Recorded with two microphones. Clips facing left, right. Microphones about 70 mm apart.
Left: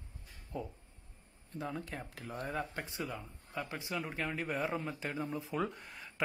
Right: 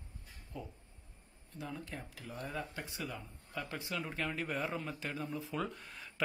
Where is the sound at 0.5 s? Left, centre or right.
Left.